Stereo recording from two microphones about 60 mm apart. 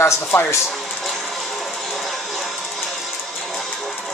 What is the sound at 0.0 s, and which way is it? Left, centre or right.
Speech, left.